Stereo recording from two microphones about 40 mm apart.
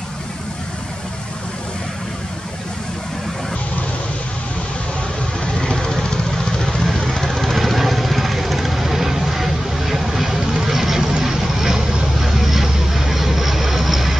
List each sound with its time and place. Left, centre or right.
5.6 s vehicle: centre
6.8 s vehicle: centre